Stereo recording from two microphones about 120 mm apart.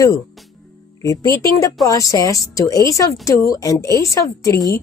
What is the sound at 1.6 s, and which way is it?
Speech, 30° left (ahead or behind).